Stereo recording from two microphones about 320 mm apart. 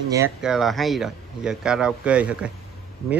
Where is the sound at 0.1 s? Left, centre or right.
Centre.